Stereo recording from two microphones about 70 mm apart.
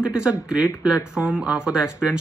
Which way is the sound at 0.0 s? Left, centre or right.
Centre.